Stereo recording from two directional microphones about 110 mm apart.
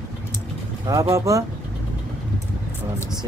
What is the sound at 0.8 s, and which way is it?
Speech, 30° right (ahead or behind).